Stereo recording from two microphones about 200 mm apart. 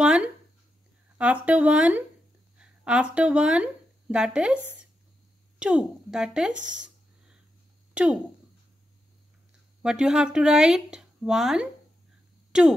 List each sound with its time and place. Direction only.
0.0 s a sound: 5° right (ahead or behind)
1.1 s speech: 5° right (ahead or behind)
5.6 s speech: 5° right (ahead or behind)
6.6 s a sound: 5° right (ahead or behind)
7.9 s speech: 5° right (ahead or behind)
9.8 s speech: 5° right (ahead or behind)